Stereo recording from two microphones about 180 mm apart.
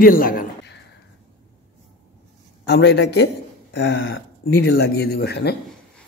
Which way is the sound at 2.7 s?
70° left (ahead or behind).